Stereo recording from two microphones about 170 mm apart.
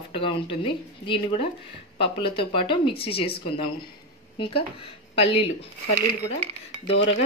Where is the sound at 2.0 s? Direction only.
30° left (ahead or behind).